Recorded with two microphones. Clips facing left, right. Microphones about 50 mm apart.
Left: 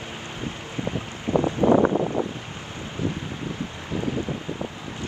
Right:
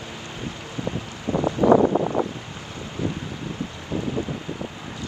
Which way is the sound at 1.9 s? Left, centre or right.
Centre.